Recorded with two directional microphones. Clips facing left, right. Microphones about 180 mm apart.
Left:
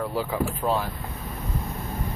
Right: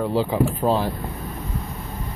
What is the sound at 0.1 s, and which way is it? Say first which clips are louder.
Speech: right 6 dB; 30° right (ahead or behind).